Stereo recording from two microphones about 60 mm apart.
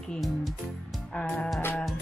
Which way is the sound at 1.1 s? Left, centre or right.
Centre.